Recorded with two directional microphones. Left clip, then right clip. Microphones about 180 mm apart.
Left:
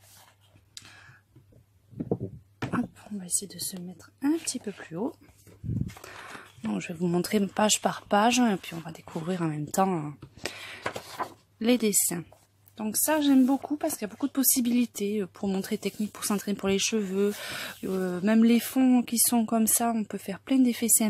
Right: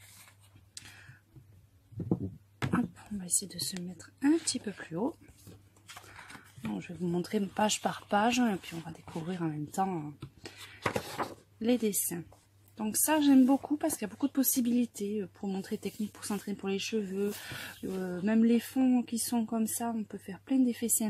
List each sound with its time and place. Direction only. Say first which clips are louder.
2.7 s speech: left 2 dB; centre (ahead or behind)
6.7 s speech: left 6 dB; 30° left (ahead or behind)
11.2 s a sound: left 5 dB; 10° left (ahead or behind)
11.6 s speech: left 5 dB; 20° left (ahead or behind)
12.7 s speech: left 3 dB; 5° left (ahead or behind); by 21.1 s 25° left (ahead or behind)